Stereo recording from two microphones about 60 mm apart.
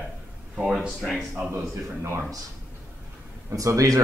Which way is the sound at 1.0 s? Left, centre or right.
Centre.